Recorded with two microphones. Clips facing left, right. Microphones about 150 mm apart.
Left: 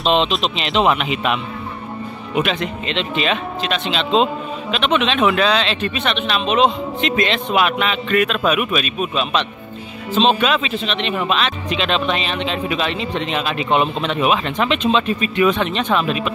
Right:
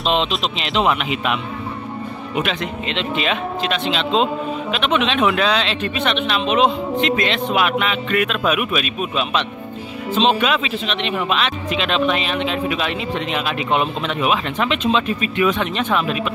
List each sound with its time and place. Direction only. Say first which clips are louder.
0.0 s speech: left 2 dB; centre (ahead or behind)
2.4 s speech: left 2 dB; 5° right (ahead or behind)
7.0 s speech: left 1 dB; centre (ahead or behind)